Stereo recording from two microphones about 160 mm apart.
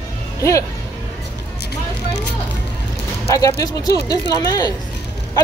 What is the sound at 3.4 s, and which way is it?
Speech, 20° left (ahead or behind).